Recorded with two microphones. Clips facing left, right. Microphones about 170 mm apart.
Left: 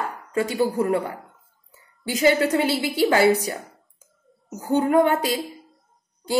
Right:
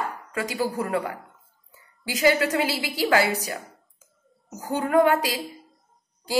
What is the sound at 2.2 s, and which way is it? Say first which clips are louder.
A woman's voice: left 2 dB; 30° left (ahead or behind).